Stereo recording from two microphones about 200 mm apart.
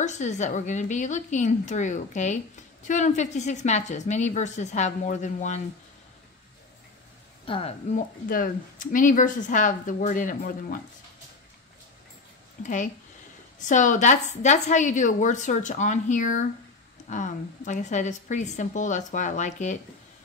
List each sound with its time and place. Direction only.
0.0 s speech: 35° left (ahead or behind)
7.4 s a woman's voice: 25° left (ahead or behind)
7.9 s speech: 45° left (ahead or behind)
12.6 s speech: 40° left (ahead or behind)